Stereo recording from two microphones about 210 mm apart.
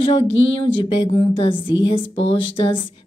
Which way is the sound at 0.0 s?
25° left (ahead or behind).